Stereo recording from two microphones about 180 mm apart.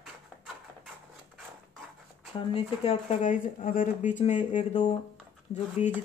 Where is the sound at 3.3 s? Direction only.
50° left (ahead or behind).